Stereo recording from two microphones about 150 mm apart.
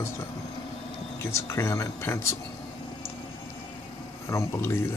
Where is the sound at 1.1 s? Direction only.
15° left (ahead or behind).